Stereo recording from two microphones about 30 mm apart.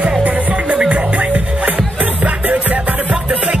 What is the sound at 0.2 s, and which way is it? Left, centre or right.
Music, right.